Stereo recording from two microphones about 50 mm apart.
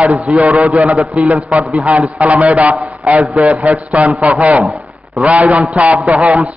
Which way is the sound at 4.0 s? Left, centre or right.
Right.